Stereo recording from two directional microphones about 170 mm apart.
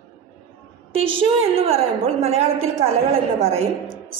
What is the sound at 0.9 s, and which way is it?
A woman's voice, 35° right (ahead or behind).